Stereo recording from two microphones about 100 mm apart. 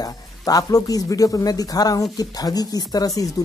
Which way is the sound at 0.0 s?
35° left (ahead or behind).